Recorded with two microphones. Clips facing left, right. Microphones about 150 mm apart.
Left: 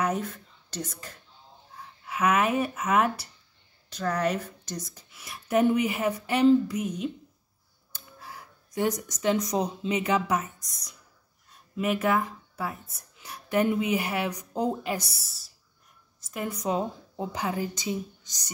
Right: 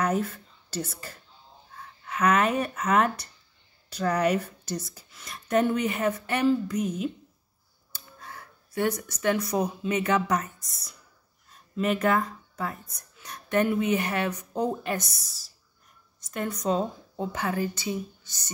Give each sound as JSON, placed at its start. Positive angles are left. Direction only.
{"t": 0.0, "sound": "speech", "side_deg": -5}
{"t": 1.8, "sound": "speech", "side_deg": 10}
{"t": 3.9, "sound": "speech", "side_deg": -10}
{"t": 5.1, "sound": "a woman's voice", "side_deg": 5}
{"t": 6.8, "sound": "speech", "side_deg": 0}
{"t": 8.2, "sound": "a woman's voice", "side_deg": 15}
{"t": 15.1, "sound": "a woman's voice", "side_deg": 5}